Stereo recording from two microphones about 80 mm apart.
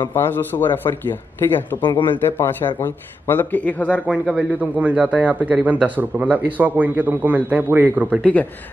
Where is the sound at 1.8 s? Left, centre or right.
Left.